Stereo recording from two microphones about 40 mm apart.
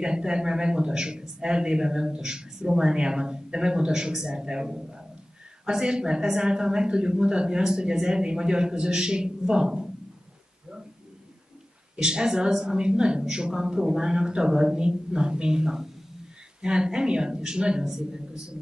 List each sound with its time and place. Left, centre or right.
0.0 s a man's voice: centre
12.0 s a man's voice: right